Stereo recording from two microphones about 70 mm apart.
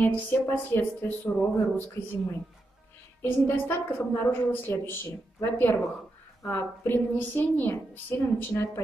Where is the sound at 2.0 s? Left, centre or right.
Left.